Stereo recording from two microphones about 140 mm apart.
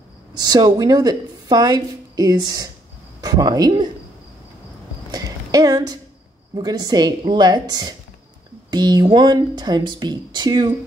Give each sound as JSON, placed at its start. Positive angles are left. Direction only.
{"t": 0.4, "sound": "speech", "side_deg": -30}
{"t": 5.1, "sound": "a sound", "side_deg": -25}
{"t": 6.5, "sound": "speech", "side_deg": -30}